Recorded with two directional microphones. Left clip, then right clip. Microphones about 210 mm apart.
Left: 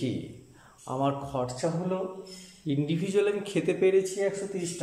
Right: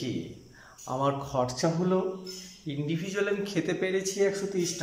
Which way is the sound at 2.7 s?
20° left (ahead or behind).